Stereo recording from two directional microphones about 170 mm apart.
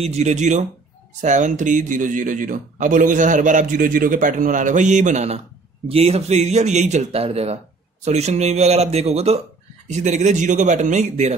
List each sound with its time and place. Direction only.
0.0 s a man's voice: 40° right (ahead or behind)